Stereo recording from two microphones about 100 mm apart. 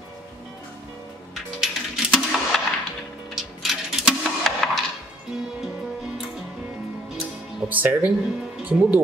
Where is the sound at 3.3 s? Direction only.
Centre (ahead or behind).